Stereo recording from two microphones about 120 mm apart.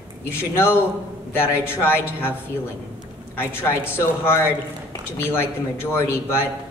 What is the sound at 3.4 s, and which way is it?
A man's voice, 20° left (ahead or behind).